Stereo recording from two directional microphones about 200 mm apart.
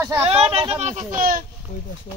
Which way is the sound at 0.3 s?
30° right (ahead or behind).